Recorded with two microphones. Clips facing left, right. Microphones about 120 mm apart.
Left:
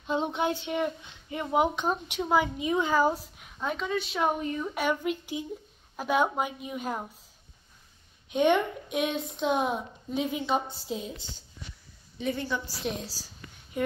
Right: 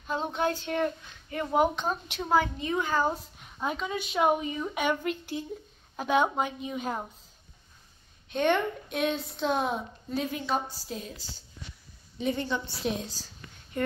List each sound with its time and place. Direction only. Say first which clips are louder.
0.0 s speech: left 1 dB; 20° left (ahead or behind)
3.5 s a woman's voice: left 1 dB; 5° right (ahead or behind)
8.3 s speech: left 2 dB; 10° left (ahead or behind)
12.2 s a woman's voice: right 1 dB; 20° right (ahead or behind)
12.7 s a woman's voice: right 2 dB; centre (ahead or behind)